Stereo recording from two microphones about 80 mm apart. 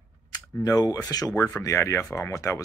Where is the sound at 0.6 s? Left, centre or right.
Left.